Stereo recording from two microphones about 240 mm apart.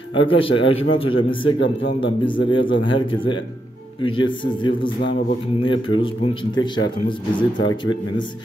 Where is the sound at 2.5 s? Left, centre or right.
Left.